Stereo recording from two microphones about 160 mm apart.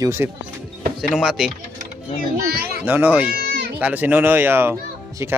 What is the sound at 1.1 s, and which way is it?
Speech, centre (ahead or behind).